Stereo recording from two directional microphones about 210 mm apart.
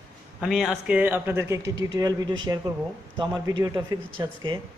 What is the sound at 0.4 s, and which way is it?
A man's voice, centre (ahead or behind).